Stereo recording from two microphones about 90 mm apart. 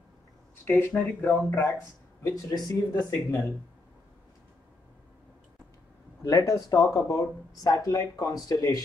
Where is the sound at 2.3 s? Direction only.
45° left (ahead or behind).